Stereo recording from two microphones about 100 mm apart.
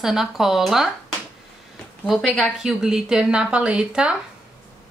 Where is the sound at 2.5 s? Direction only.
5° right (ahead or behind).